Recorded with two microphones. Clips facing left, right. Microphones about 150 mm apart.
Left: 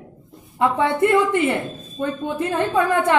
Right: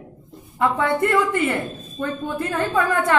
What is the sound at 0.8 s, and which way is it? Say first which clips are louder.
A woman's voice: left 3 dB; 25° left (ahead or behind).